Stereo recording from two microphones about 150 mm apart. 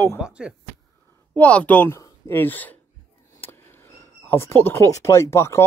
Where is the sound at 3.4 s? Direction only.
15° left (ahead or behind).